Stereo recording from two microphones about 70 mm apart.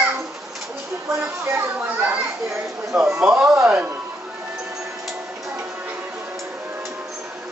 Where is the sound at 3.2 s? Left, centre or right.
Centre.